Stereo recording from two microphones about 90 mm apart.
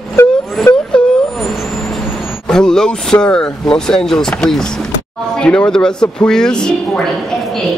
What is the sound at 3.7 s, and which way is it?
A woman's voice, 5° left (ahead or behind).